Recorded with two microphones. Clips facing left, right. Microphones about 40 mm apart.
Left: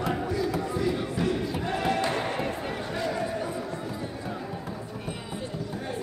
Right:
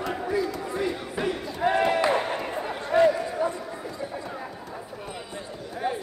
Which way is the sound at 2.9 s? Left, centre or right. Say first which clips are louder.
Right 15 dB; right.